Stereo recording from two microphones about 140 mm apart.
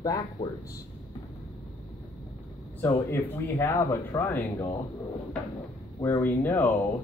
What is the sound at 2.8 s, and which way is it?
Speech, 20° left (ahead or behind).